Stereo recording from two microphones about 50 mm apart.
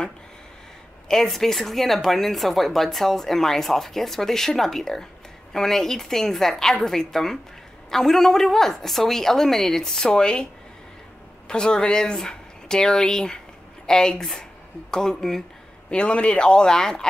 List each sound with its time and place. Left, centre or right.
1.0 s a woman's voice: centre
15.9 s speech: left